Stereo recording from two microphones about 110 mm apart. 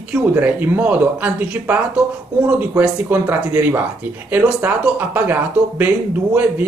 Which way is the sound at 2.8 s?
15° right (ahead or behind).